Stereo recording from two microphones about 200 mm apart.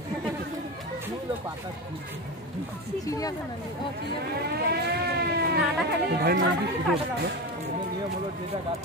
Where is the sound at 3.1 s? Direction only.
15° left (ahead or behind).